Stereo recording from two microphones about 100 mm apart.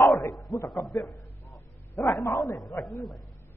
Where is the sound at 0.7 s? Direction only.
Centre (ahead or behind).